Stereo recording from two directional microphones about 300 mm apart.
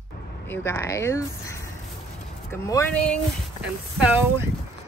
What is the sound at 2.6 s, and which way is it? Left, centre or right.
Speech, centre.